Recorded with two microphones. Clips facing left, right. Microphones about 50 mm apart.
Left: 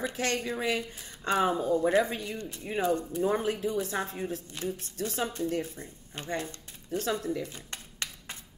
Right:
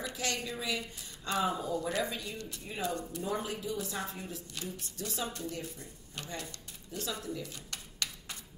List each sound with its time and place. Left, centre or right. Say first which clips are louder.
0.0 s a woman's voice: left 6 dB; left